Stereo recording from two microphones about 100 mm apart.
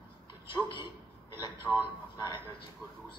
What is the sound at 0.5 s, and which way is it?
Speech, 50° left (ahead or behind).